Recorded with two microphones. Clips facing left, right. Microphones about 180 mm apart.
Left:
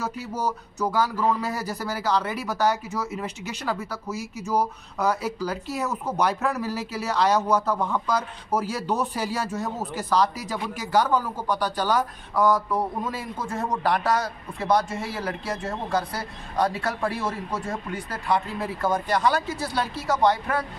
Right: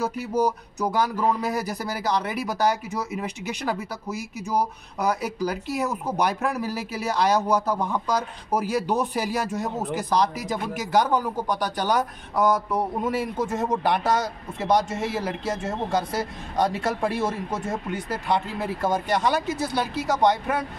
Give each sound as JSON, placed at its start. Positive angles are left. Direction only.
{"t": 0.0, "sound": "speech", "side_deg": -15}